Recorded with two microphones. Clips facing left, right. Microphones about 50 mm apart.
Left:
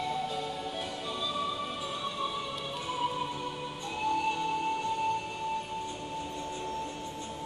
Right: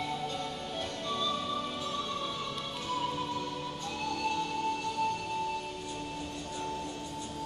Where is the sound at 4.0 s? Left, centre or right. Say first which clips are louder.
Left 4 dB; centre.